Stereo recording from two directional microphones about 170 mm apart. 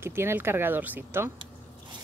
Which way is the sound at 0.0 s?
15° right (ahead or behind).